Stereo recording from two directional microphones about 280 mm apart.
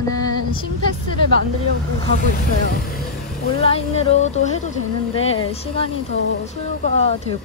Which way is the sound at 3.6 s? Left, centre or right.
Left.